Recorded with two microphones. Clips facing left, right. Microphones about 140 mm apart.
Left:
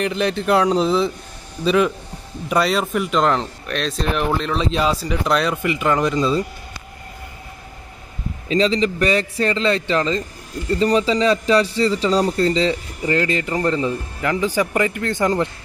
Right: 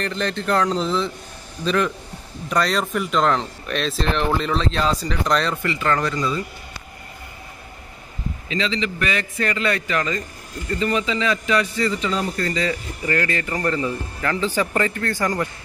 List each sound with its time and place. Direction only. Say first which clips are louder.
0.0 s speech: left 4 dB; 10° left (ahead or behind)
8.5 s a man's voice: left 7 dB; 40° left (ahead or behind); by 15.5 s 20° left (ahead or behind)